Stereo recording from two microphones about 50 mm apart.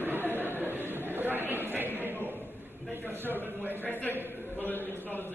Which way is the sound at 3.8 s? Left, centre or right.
Left.